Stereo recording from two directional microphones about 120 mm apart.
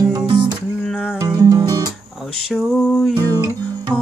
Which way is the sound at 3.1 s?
35° right (ahead or behind).